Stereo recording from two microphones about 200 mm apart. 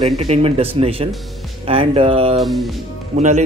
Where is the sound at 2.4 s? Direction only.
Centre (ahead or behind).